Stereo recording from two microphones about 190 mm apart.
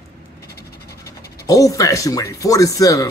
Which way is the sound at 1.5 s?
20° left (ahead or behind).